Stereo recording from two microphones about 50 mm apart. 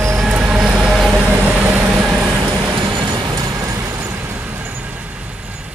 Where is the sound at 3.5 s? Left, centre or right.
Right.